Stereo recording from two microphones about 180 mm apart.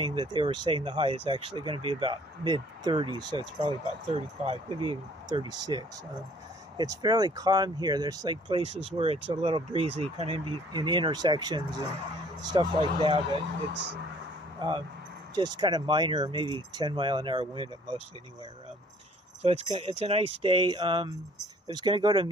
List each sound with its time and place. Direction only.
0.0 s speech: 25° right (ahead or behind)
15.3 s speech: 25° right (ahead or behind)
19.4 s speech: 30° right (ahead or behind)